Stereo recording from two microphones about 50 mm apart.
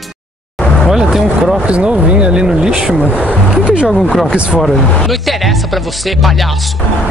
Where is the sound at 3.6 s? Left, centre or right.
Right.